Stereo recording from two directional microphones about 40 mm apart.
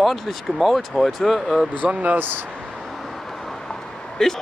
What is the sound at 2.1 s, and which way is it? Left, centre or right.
Speech, right.